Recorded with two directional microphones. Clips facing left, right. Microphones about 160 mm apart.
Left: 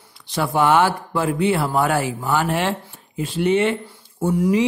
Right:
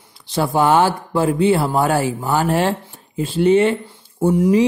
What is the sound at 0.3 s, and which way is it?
A man's voice, 30° right (ahead or behind).